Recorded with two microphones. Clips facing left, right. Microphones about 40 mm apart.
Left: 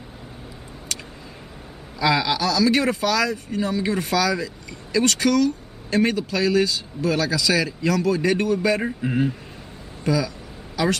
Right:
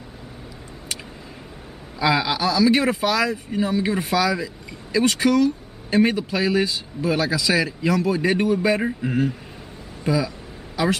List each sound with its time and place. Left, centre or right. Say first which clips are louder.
2.0 s speech: even; centre
8.8 s speech: even; centre
10.0 s speech: even; centre